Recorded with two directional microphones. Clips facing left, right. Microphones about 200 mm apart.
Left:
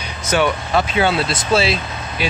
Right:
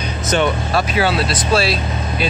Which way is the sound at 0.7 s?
25° left (ahead or behind).